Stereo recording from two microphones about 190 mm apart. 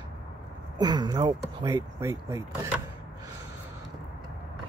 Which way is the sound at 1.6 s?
15° right (ahead or behind).